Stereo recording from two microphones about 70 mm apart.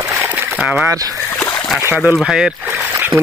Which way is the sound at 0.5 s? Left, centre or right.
Right.